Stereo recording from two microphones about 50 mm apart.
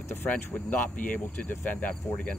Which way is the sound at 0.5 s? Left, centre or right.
Left.